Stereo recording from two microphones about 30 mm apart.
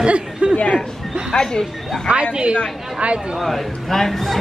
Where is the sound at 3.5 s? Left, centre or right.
Centre.